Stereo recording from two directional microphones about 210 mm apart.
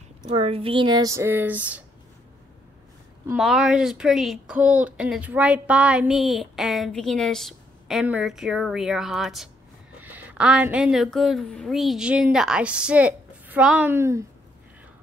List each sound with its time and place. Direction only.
0.2 s speech: 25° right (ahead or behind); by 1.9 s 5° right (ahead or behind)
3.3 s a woman's voice: centre (ahead or behind)